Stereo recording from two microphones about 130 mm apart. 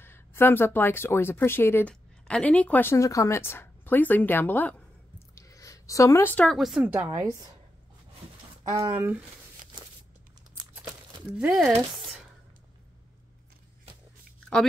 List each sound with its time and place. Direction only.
0.0 s speech: 20° left (ahead or behind)
5.3 s a sound: 25° left (ahead or behind)
6.3 s speech: 10° left (ahead or behind)
6.6 s speech: 5° right (ahead or behind)
6.9 s a woman's voice: 20° right (ahead or behind)
8.8 s speech: 15° right (ahead or behind)
11.3 s speech: 5° right (ahead or behind)